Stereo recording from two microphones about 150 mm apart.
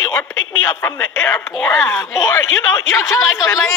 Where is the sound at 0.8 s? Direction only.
15° left (ahead or behind).